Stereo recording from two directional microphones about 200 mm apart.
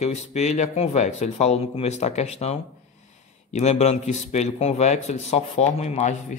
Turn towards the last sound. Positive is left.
turn(degrees=35)  # may be behind; listen again after turning